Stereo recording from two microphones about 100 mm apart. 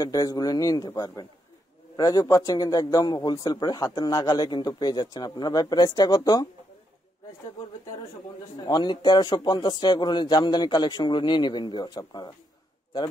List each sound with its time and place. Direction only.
0.0 s a man's voice: 35° left (ahead or behind)
8.5 s speech: 45° left (ahead or behind)